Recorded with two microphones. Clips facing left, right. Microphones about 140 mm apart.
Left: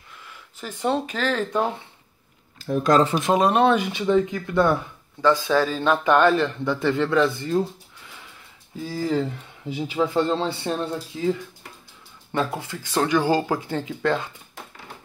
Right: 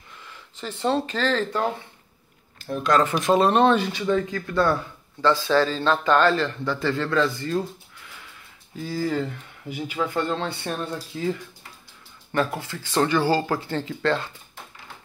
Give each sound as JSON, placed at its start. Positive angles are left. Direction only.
{"t": 0.3, "sound": "speech", "side_deg": 10}
{"t": 2.8, "sound": "speech", "side_deg": 35}
{"t": 3.1, "sound": "speech", "side_deg": 15}
{"t": 8.8, "sound": "speech", "side_deg": 20}
{"t": 12.7, "sound": "speech", "side_deg": 10}